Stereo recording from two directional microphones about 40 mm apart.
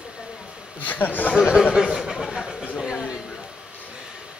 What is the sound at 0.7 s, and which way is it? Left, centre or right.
Speech, left.